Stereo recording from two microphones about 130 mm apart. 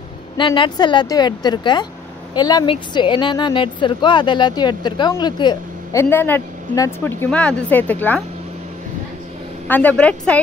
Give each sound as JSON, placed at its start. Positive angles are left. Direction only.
{"t": 0.4, "sound": "speech", "side_deg": 40}
{"t": 5.9, "sound": "speech", "side_deg": 15}
{"t": 9.7, "sound": "speech", "side_deg": 10}